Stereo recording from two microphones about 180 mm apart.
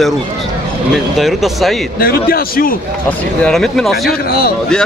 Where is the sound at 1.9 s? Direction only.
55° left (ahead or behind).